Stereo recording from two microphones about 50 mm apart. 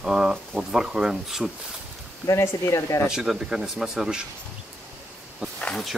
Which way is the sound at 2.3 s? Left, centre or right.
Left.